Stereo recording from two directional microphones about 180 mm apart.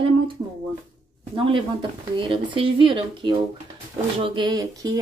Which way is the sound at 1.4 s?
30° right (ahead or behind).